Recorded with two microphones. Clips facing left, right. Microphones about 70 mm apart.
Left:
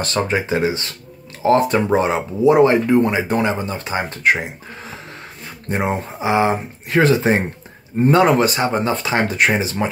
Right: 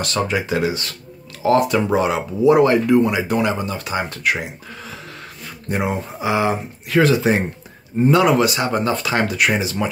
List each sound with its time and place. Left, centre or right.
0.0 s speech: left